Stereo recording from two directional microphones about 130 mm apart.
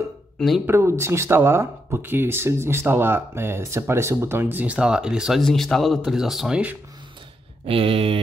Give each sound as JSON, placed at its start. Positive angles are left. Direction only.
{"t": 0.7, "sound": "speech", "side_deg": -20}
{"t": 7.6, "sound": "speech", "side_deg": -45}